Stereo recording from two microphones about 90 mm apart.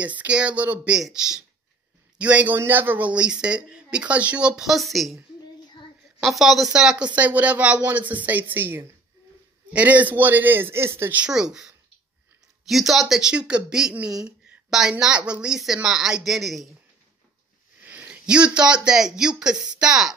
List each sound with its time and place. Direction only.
0.2 s speech: 10° right (ahead or behind)
6.2 s a man's voice: centre (ahead or behind); by 11.1 s 25° right (ahead or behind)
11.1 s speech: 10° right (ahead or behind)
17.8 s speech: 15° right (ahead or behind)